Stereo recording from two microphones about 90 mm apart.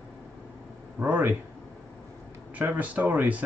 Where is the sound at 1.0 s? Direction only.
20° right (ahead or behind).